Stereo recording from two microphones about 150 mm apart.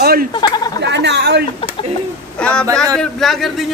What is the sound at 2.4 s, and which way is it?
Speech, 5° left (ahead or behind).